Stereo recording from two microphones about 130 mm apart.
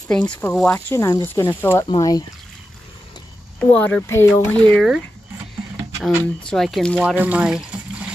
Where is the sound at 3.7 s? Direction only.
15° left (ahead or behind).